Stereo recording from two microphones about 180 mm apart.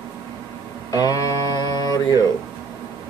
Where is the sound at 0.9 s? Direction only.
20° left (ahead or behind).